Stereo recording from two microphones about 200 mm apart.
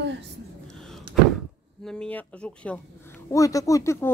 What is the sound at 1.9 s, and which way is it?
Speech, 5° left (ahead or behind).